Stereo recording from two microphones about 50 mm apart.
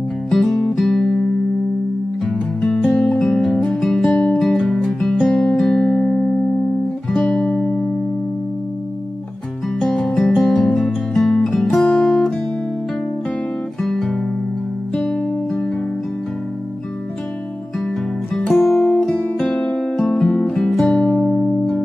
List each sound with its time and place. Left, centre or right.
0.3 s music: centre
1.0 s music: centre
5.9 s music: left
7.2 s guitar: centre
9.8 s music: centre
11.9 s music: left
13.8 s guitar: centre
15.0 s music: centre
18.5 s music: centre
19.4 s music: left